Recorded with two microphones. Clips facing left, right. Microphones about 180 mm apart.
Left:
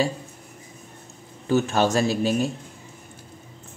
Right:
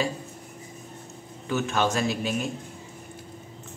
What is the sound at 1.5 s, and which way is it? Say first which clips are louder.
Speech: left 5 dB; 35° left (ahead or behind).